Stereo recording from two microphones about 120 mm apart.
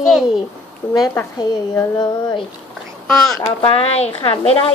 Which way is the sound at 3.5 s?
50° left (ahead or behind).